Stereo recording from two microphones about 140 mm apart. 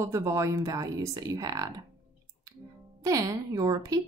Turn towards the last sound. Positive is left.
turn(degrees=-25)  # may be behind; listen again after turning